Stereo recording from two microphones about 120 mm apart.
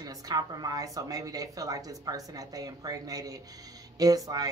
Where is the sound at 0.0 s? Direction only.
30° right (ahead or behind).